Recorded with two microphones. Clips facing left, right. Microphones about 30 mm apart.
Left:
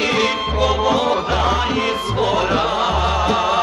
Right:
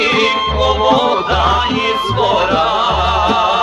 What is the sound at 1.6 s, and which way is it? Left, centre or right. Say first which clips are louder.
Music: right 4 dB; centre.